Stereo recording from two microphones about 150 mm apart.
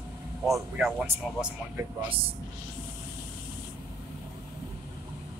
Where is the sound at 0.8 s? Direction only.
5° right (ahead or behind).